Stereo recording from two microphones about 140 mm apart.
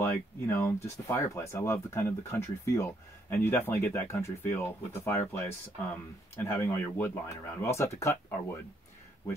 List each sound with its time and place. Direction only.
0.0 s speech: 15° left (ahead or behind)